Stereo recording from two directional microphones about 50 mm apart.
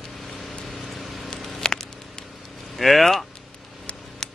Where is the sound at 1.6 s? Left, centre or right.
Centre.